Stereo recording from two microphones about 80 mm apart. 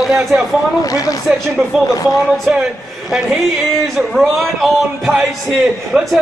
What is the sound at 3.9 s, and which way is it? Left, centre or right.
Speech, centre.